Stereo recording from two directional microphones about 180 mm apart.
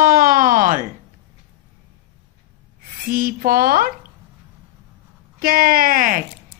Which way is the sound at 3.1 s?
55° right (ahead or behind).